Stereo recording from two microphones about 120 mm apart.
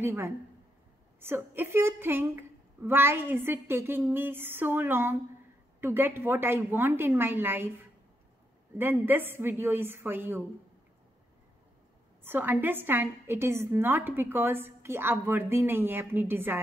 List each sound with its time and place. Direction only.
0.0 s a woman's voice: 20° right (ahead or behind)
8.7 s a woman's voice: 15° right (ahead or behind)
12.2 s a woman's voice: 15° right (ahead or behind)